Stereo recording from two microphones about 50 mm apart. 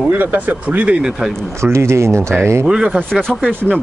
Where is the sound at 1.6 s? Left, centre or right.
Right.